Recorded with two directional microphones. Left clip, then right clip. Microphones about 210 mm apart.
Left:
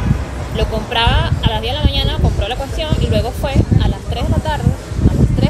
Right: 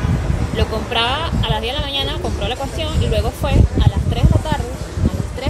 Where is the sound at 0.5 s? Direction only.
15° right (ahead or behind).